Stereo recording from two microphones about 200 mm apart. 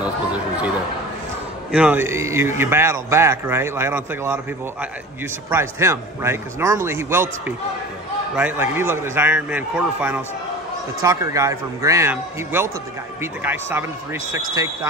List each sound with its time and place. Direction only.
0.0 s chatter: 5° right (ahead or behind)
1.7 s a man's voice: 5° right (ahead or behind)
5.5 s a man's voice: 15° right (ahead or behind)